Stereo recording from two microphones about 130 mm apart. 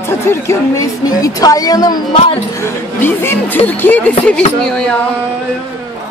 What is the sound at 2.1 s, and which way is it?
Speech, 50° left (ahead or behind).